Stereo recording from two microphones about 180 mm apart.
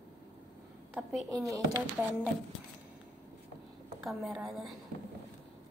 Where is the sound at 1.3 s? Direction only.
20° right (ahead or behind).